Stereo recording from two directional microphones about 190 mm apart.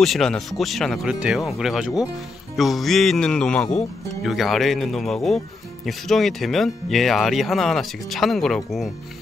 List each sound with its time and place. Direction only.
0.0 s speech: centre (ahead or behind)